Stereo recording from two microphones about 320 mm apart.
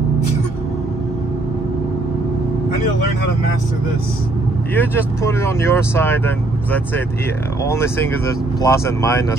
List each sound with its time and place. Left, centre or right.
4.7 s speech: centre